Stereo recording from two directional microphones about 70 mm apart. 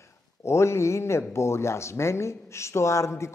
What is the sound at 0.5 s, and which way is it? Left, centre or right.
Speech, left.